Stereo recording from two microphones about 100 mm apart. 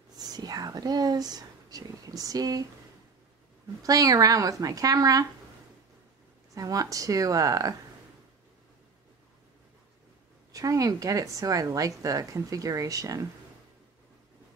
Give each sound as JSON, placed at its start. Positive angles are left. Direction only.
{"t": 0.2, "sound": "speech", "side_deg": -40}
{"t": 3.8, "sound": "speech", "side_deg": -35}
{"t": 6.5, "sound": "speech", "side_deg": -35}
{"t": 10.5, "sound": "speech", "side_deg": -35}